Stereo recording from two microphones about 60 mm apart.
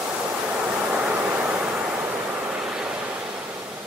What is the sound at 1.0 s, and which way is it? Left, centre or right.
Vehicle, centre.